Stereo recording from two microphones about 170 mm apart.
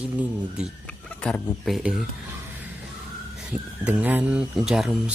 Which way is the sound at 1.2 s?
5° left (ahead or behind).